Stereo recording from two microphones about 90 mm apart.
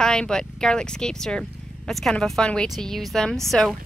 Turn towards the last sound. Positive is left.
turn(degrees=5)  # may be behind; listen again after turning